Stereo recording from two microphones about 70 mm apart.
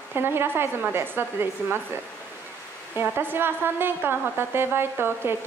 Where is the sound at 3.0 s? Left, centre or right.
Right.